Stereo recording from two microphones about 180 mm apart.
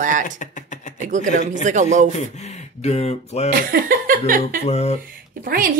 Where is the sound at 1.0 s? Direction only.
45° right (ahead or behind).